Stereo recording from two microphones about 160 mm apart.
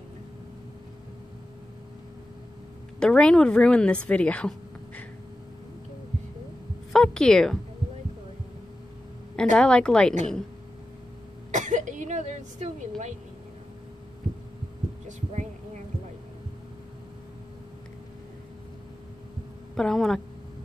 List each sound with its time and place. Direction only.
3.0 s a woman's voice: 5° left (ahead or behind)
6.9 s speech: 5° left (ahead or behind)
9.4 s a woman's voice: 5° left (ahead or behind)
11.5 s a sound: 50° right (ahead or behind)
19.7 s speech: 5° left (ahead or behind)